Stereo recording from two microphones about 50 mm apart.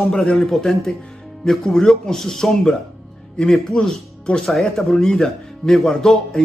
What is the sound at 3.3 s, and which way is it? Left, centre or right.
Speech, centre.